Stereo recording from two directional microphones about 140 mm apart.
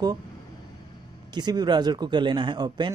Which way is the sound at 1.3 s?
30° right (ahead or behind).